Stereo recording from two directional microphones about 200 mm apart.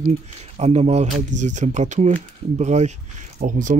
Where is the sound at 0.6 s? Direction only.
35° right (ahead or behind).